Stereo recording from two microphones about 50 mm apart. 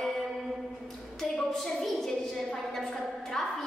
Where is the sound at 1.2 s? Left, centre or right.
Centre.